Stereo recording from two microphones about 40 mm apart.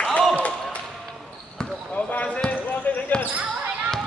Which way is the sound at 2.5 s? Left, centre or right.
Left.